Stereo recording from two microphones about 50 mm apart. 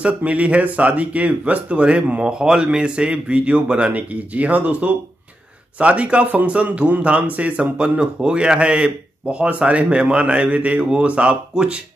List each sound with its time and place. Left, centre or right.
0.0 s speech: right